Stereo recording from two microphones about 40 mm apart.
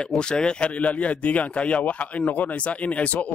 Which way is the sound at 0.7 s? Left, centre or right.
Left.